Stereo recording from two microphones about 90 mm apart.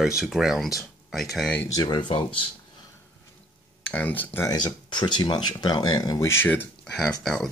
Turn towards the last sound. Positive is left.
turn(degrees=5)  # may be behind; listen again after turning